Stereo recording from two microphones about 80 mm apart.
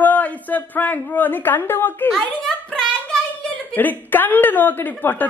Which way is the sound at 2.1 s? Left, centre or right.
Centre.